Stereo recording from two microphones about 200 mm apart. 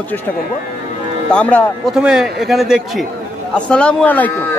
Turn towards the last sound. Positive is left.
turn(degrees=10)  # may be behind; listen again after turning